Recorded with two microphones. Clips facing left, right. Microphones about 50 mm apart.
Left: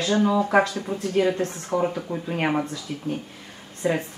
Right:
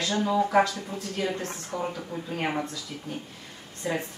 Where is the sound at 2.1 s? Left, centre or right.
Left.